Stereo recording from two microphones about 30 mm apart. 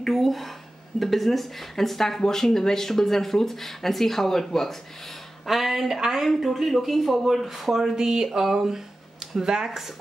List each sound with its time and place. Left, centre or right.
0.0 s a sound: centre
0.9 s speech: centre
5.5 s speech: centre
7.9 s speech: centre